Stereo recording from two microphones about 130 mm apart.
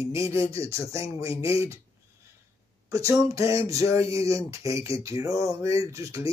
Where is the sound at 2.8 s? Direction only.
25° right (ahead or behind).